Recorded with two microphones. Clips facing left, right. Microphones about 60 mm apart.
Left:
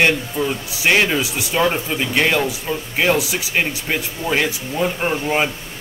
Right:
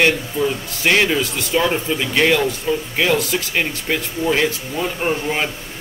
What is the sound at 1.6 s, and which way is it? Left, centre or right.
Speech, left.